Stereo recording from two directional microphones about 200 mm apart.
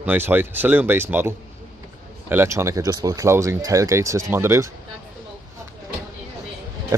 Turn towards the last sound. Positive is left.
turn(degrees=-15)  # may be behind; listen again after turning